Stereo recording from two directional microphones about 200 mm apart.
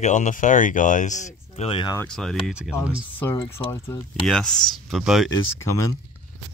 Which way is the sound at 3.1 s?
10° left (ahead or behind).